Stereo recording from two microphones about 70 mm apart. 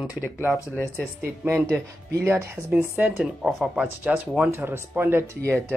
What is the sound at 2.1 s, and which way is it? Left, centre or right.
Speech, right.